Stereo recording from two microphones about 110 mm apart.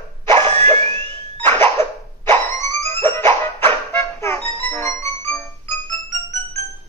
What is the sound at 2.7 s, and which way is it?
Music, 70° right (ahead or behind).